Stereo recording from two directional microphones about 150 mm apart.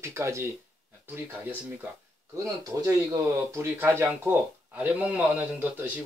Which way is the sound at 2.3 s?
25° right (ahead or behind).